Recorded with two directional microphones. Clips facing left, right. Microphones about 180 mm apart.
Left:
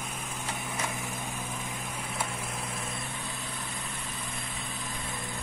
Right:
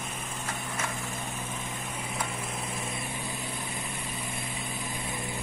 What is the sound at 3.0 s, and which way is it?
Vehicle, 20° right (ahead or behind).